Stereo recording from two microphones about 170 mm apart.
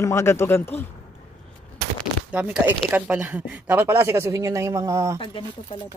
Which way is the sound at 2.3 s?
10° right (ahead or behind).